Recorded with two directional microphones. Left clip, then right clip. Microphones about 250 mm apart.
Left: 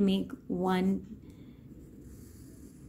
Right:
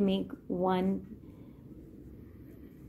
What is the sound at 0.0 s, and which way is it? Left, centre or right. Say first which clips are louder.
Speech: even; left.